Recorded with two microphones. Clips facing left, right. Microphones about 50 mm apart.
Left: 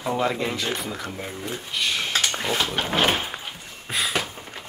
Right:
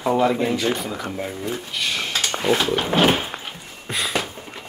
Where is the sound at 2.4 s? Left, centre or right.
Right.